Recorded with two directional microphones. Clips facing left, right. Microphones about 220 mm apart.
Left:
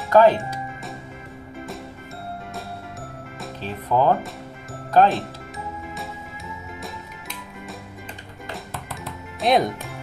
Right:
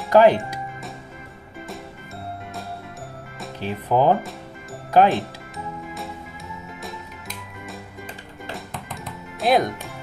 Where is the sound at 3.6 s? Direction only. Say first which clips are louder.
Right 1 dB; 15° right (ahead or behind).